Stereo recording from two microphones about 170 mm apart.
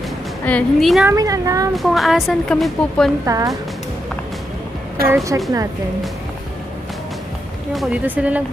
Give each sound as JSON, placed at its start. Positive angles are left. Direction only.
{"t": 0.5, "sound": "speech", "side_deg": 5}
{"t": 1.0, "sound": "a woman's voice", "side_deg": -20}
{"t": 1.8, "sound": "speech", "side_deg": 0}
{"t": 3.3, "sound": "a woman's voice", "side_deg": -20}
{"t": 5.0, "sound": "speech", "side_deg": -15}
{"t": 7.7, "sound": "speech", "side_deg": -5}